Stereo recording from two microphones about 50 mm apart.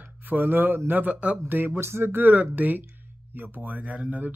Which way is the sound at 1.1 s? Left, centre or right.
Right.